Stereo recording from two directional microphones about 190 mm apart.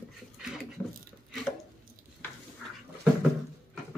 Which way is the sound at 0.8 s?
Centre (ahead or behind).